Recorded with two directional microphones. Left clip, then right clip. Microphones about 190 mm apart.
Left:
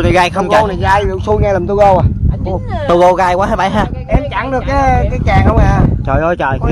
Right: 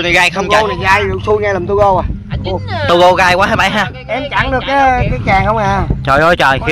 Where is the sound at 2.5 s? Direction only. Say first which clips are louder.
Right 1 dB; 5° left (ahead or behind).